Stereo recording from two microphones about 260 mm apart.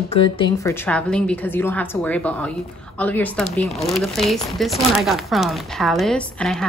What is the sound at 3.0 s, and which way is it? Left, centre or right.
Speech, centre.